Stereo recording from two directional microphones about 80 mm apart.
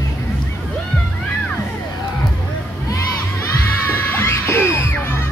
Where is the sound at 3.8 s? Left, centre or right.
Left.